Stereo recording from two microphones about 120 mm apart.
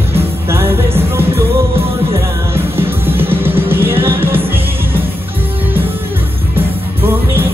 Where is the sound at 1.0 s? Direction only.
20° right (ahead or behind).